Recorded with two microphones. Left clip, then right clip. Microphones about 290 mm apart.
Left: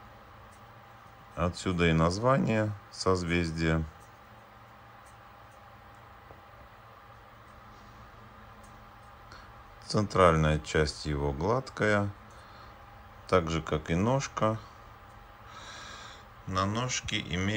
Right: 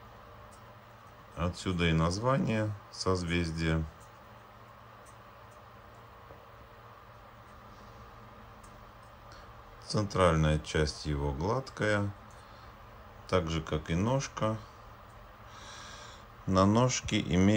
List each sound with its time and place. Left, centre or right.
1.3 s speech: centre
9.8 s speech: centre
13.3 s speech: centre
15.5 s snort: centre
16.4 s speech: right